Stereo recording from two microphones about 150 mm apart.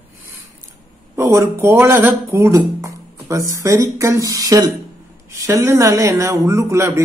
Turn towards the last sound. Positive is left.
turn(degrees=-20)  # may be behind; listen again after turning